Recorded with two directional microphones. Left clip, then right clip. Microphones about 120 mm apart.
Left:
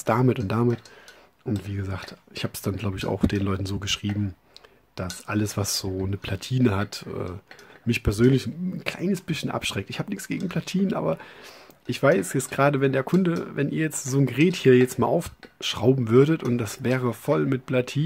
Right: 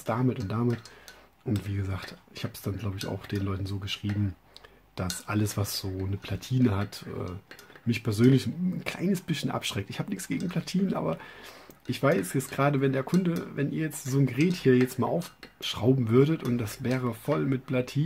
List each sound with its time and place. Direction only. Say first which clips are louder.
0.0 s speech: left 7 dB; 55° left (ahead or behind)
1.6 s speech: left 3 dB; 30° left (ahead or behind); by 4.1 s 55° left (ahead or behind)
4.9 s speech: left 3 dB; 30° left (ahead or behind)
5.7 s speech: left 6 dB; 45° left (ahead or behind)